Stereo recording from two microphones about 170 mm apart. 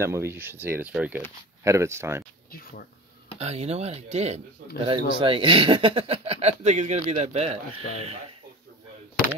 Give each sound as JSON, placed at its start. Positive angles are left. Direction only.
{"t": 0.0, "sound": "speech", "side_deg": -15}
{"t": 2.5, "sound": "speech", "side_deg": 60}
{"t": 3.3, "sound": "speech", "side_deg": -40}